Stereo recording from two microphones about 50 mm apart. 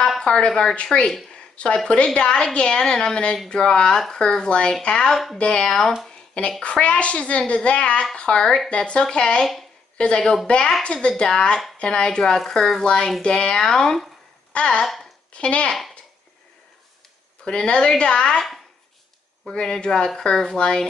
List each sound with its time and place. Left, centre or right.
0.2 s speech: centre
5.1 s a woman's voice: centre
5.4 s speech: centre
6.6 s speech: left
17.5 s speech: centre
19.4 s speech: centre